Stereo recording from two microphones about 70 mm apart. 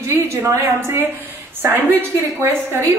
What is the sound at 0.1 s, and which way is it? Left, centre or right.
A woman's voice, right.